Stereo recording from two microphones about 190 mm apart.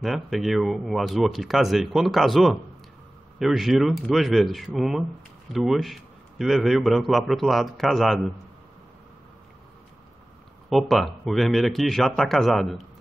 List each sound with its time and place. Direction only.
0.0 s a man's voice: centre (ahead or behind)
10.7 s a man's voice: centre (ahead or behind)